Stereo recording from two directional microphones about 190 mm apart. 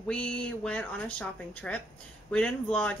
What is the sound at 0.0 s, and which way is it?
Speech, 5° left (ahead or behind).